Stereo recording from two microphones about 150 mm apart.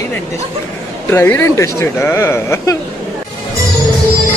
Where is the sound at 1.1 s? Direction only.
15° left (ahead or behind).